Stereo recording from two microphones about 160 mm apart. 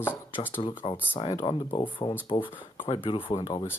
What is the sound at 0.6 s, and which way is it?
Speech, 30° left (ahead or behind).